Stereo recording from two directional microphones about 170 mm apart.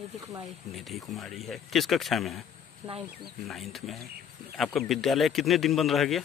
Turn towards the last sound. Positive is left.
turn(degrees=0)  # may be behind; listen again after turning